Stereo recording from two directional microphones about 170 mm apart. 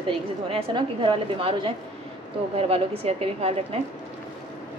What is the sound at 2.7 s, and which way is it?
Speech, 35° right (ahead or behind).